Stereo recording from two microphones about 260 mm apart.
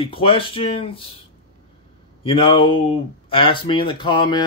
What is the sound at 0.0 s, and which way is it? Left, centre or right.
Speech, centre.